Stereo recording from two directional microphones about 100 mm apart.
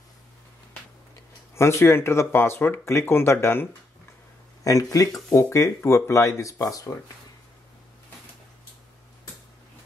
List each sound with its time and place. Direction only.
1.5 s speech: 25° left (ahead or behind)
4.6 s speech: 35° left (ahead or behind)